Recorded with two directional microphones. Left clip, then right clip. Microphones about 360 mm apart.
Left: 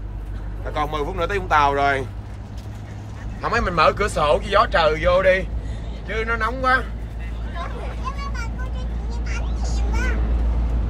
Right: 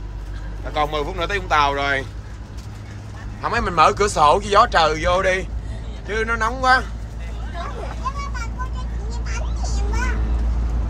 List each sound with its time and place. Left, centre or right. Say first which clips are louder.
0.7 s speech: right 2 dB; centre
3.3 s a man's voice: right 2 dB; centre
9.2 s vehicle: right 1 dB; right